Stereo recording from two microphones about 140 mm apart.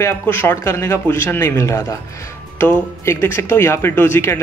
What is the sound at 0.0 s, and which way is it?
Speech, 15° left (ahead or behind).